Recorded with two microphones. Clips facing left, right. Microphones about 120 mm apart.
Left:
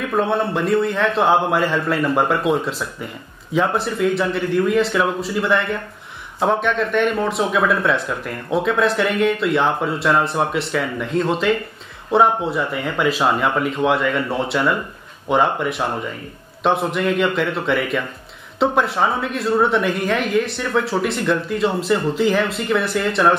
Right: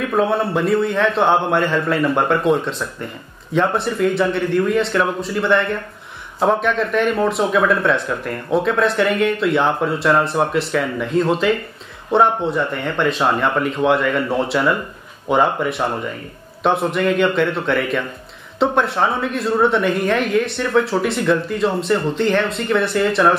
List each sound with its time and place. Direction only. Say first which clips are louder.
0.1 s speech: right 1 dB; centre (ahead or behind)